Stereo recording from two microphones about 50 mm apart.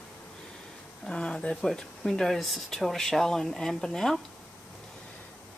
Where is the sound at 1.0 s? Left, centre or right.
Centre.